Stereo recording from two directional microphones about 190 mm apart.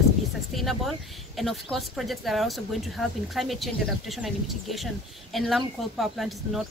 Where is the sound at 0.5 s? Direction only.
Centre (ahead or behind).